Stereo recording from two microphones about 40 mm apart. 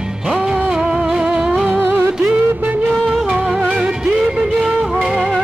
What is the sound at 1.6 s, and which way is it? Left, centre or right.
Music, right.